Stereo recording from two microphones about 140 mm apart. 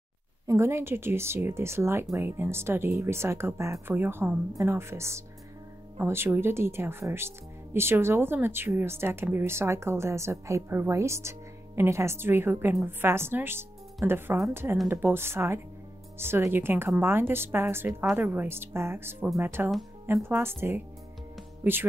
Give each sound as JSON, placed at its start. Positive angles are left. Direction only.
{"t": 0.5, "sound": "speech", "side_deg": -20}